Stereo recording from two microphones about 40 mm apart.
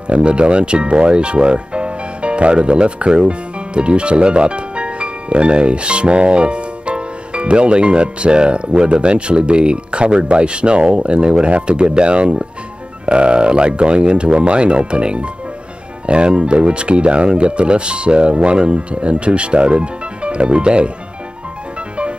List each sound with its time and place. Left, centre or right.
0.1 s speech: right